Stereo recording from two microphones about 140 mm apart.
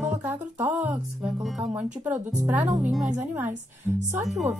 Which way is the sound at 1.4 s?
Centre (ahead or behind).